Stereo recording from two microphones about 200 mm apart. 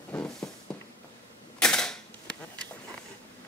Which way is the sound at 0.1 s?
10° left (ahead or behind).